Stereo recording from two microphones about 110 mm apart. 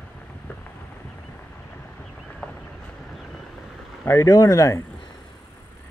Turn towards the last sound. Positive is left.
turn(degrees=30)  # may be behind; listen again after turning